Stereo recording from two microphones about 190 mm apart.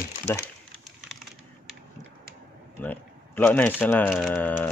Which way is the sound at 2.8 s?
10° left (ahead or behind).